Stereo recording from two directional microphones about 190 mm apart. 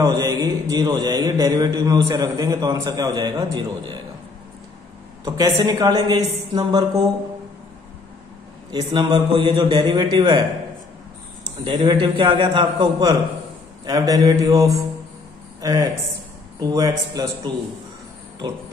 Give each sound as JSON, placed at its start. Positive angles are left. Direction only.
{"t": 0.0, "sound": "mantra", "side_deg": -15}
{"t": 5.2, "sound": "mantra", "side_deg": -20}
{"t": 8.7, "sound": "mantra", "side_deg": -20}
{"t": 11.6, "sound": "mantra", "side_deg": -20}
{"t": 15.6, "sound": "speech", "side_deg": -20}
{"t": 16.5, "sound": "mantra", "side_deg": -20}